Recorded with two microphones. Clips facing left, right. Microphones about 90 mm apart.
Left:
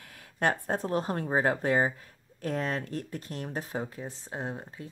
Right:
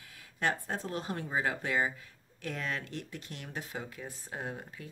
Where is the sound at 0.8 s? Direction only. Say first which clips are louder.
Left 7 dB; 40° left (ahead or behind).